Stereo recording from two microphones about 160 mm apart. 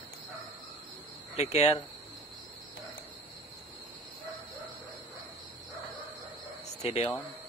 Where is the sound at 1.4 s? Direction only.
40° left (ahead or behind).